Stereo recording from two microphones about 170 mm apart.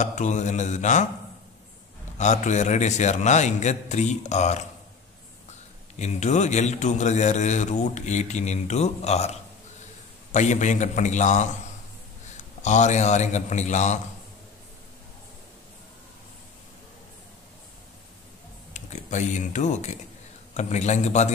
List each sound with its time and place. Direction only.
0.0 s a man's voice: 45° left (ahead or behind)
2.1 s a man's voice: 45° left (ahead or behind)
5.9 s a man's voice: 45° left (ahead or behind)
12.6 s a man's voice: 45° left (ahead or behind)
18.7 s a man's voice: 45° left (ahead or behind)